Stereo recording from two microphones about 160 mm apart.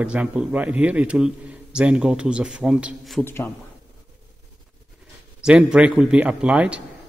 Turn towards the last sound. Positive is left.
turn(degrees=-5)  # may be behind; listen again after turning